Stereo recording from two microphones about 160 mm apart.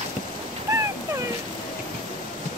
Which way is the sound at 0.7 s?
20° right (ahead or behind).